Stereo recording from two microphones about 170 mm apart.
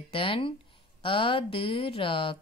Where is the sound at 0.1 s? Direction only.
35° left (ahead or behind).